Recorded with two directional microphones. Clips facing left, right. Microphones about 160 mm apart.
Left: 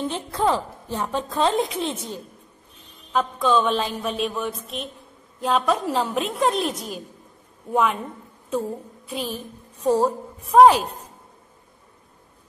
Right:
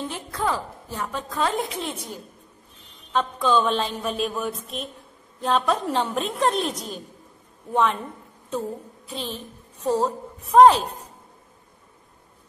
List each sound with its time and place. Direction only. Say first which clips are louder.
0.0 s a woman's voice: left 4 dB; 25° left (ahead or behind)
3.1 s a sound: left 1 dB; 5° left (ahead or behind)
9.1 s a woman's voice: left 3 dB; 10° left (ahead or behind)